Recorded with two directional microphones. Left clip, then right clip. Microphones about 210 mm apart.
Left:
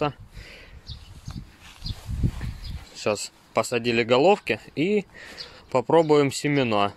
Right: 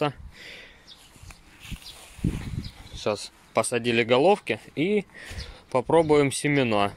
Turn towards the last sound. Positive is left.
turn(degrees=0)  # may be behind; listen again after turning